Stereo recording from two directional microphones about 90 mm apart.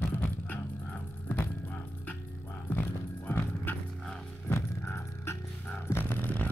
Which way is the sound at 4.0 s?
10° left (ahead or behind).